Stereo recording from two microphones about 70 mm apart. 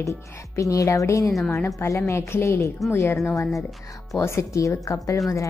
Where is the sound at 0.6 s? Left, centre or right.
Left.